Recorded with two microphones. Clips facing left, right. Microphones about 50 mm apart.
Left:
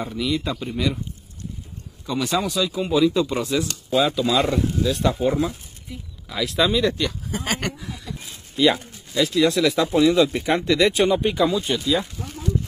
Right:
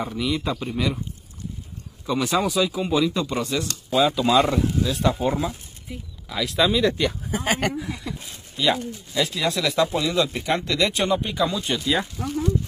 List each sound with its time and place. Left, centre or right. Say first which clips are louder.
0.0 s speech: left 1 dB; centre
2.0 s speech: right 1 dB; centre
7.0 s speech: right 2 dB; centre
8.5 s speech: left 3 dB; centre